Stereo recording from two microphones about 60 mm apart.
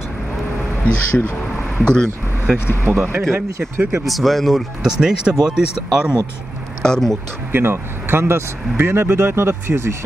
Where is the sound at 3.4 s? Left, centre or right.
Right.